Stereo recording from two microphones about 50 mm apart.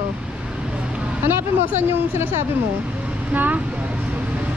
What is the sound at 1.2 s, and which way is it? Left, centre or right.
Speech, right.